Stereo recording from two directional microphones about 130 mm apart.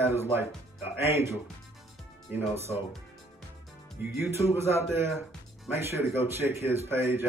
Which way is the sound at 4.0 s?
15° right (ahead or behind).